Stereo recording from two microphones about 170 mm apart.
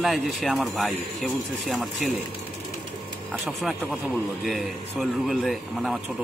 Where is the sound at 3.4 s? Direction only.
Centre (ahead or behind).